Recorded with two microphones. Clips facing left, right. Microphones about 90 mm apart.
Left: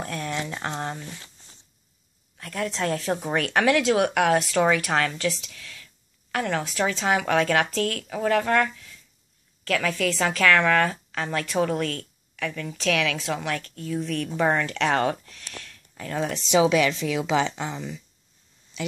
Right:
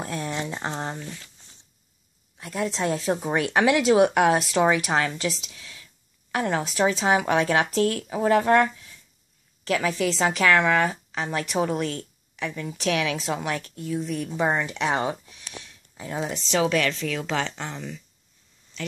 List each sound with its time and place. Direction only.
0.0 s speech: 25° right (ahead or behind)
2.3 s speech: 15° right (ahead or behind)
16.3 s speech: 5° left (ahead or behind)